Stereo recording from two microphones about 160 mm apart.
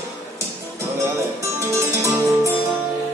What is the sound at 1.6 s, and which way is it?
Music, 20° right (ahead or behind).